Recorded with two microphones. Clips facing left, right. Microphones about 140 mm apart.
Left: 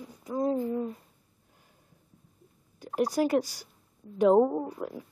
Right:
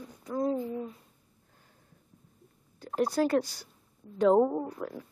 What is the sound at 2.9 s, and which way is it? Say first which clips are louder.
Speech: left 1 dB; 15° left (ahead or behind).